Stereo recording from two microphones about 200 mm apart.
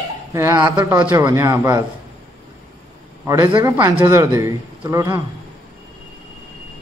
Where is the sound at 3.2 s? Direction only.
15° right (ahead or behind).